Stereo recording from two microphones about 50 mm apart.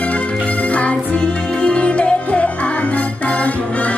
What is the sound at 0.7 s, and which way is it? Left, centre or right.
Music, left.